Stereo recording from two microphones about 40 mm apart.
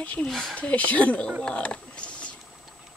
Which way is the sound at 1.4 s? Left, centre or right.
Left.